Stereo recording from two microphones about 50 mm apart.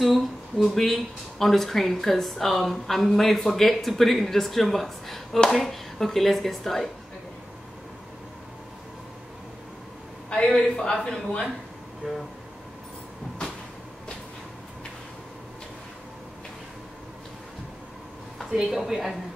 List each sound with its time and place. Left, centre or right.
0.0 s speech: centre
10.3 s a man's voice: centre
12.0 s vehicle: centre
18.7 s speech: centre